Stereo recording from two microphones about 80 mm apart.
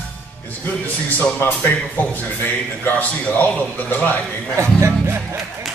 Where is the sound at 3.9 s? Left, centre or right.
Left.